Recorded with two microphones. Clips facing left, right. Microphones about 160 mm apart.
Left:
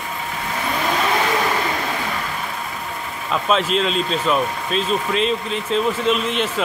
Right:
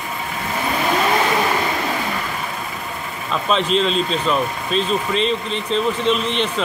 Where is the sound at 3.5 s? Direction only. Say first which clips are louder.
Right 1 dB; 5° left (ahead or behind).